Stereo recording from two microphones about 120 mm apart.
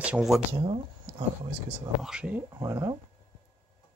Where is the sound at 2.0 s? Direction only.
5° right (ahead or behind).